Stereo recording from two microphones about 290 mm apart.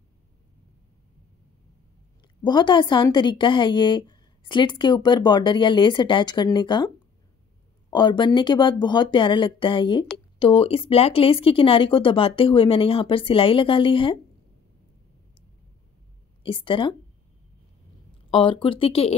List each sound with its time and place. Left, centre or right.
2.4 s a woman's voice: centre
7.9 s a woman's voice: centre
16.4 s a woman's voice: centre
18.3 s a woman's voice: centre